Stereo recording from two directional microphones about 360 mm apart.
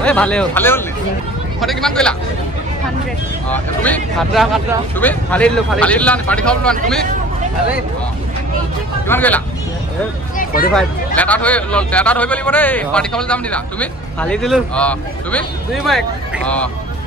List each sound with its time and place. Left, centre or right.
0.0 s speech: centre
3.4 s speech: centre
9.0 s speech: centre
10.3 s a sound: left
10.7 s speech: centre